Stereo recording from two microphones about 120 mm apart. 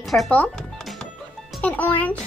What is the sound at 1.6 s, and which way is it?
Speech, 15° left (ahead or behind).